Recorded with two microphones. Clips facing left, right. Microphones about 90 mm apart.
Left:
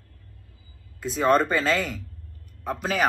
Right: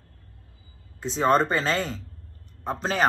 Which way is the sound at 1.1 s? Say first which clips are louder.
Even; 30° right (ahead or behind).